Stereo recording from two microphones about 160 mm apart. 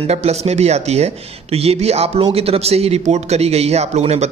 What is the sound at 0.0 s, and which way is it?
A man's voice, 40° right (ahead or behind).